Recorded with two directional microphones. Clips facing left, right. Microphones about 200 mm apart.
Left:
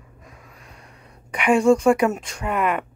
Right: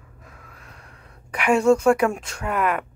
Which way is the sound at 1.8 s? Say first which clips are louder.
Left 1 dB; 5° left (ahead or behind).